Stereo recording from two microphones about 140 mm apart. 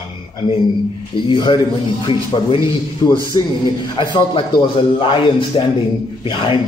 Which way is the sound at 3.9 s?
35° left (ahead or behind).